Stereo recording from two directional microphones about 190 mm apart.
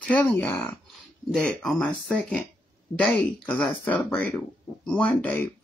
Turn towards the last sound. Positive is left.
turn(degrees=10)  # may be behind; listen again after turning